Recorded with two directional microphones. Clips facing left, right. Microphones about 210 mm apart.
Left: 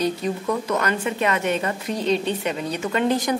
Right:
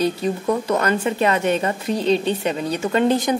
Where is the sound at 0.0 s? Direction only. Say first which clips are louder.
Right 3 dB; 30° right (ahead or behind).